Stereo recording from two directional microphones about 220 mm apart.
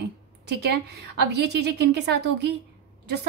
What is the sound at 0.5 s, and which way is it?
A woman's voice, 50° right (ahead or behind).